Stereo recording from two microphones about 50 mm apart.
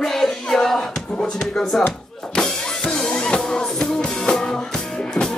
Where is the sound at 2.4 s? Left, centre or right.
Centre.